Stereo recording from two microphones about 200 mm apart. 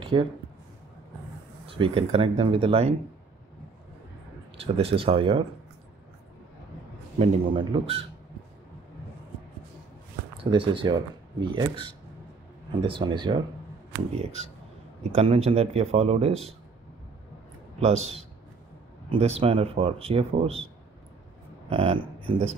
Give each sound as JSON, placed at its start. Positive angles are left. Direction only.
{"t": 0.0, "sound": "a sound", "side_deg": -25}
{"t": 1.7, "sound": "speech", "side_deg": -25}
{"t": 4.6, "sound": "speech", "side_deg": -30}
{"t": 7.2, "sound": "speech", "side_deg": -25}
{"t": 10.4, "sound": "speech", "side_deg": -25}
{"t": 15.1, "sound": "speech", "side_deg": -30}
{"t": 17.7, "sound": "speech", "side_deg": -30}
{"t": 21.6, "sound": "speech", "side_deg": -25}